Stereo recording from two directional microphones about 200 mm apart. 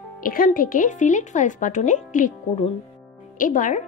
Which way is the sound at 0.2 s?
45° left (ahead or behind).